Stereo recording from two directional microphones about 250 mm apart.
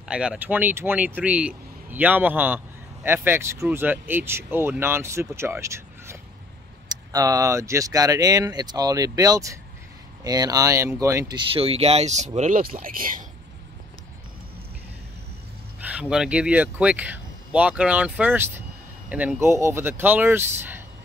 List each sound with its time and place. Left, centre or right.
0.1 s speech: centre; by 13.2 s right
15.8 s speech: centre